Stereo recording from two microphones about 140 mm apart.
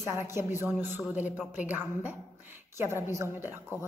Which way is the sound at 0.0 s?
20° right (ahead or behind).